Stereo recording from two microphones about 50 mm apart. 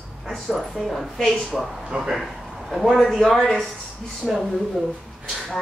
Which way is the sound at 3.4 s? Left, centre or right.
Centre.